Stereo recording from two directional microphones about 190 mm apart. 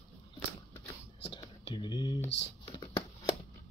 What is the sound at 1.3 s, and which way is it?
Computer keyboard, 25° left (ahead or behind).